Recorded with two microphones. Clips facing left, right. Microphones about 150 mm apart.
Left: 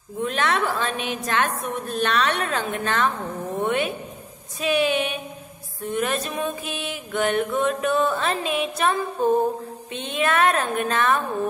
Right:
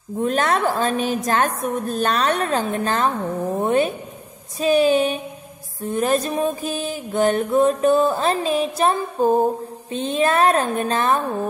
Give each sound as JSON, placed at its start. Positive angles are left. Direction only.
{"t": 0.2, "sound": "music", "side_deg": -40}
{"t": 3.5, "sound": "a sound", "side_deg": -35}
{"t": 4.6, "sound": "music", "side_deg": -35}